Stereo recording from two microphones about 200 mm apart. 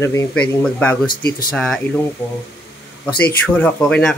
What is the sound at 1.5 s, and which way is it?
Speech, 5° left (ahead or behind).